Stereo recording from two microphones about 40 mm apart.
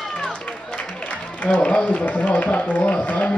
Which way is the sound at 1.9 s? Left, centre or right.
Left.